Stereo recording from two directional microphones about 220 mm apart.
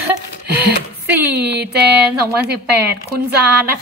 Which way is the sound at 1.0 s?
10° right (ahead or behind).